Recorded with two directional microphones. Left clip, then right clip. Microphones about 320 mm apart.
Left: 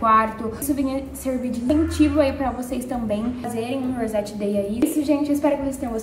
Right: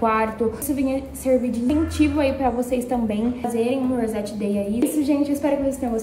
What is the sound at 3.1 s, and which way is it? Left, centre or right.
A woman's voice, centre.